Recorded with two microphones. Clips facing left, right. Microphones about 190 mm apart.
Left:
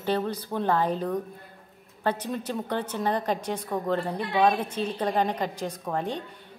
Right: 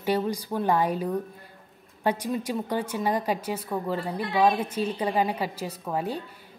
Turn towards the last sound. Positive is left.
turn(degrees=-5)  # may be behind; listen again after turning